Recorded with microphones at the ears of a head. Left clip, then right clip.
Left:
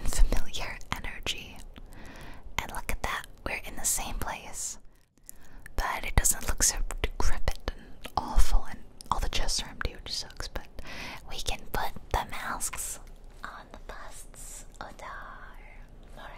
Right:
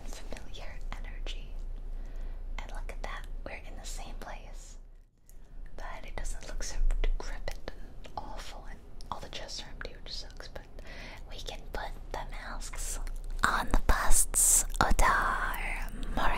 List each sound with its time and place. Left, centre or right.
0.0 s whispering: left
5.8 s whispering: left
13.4 s whispering: right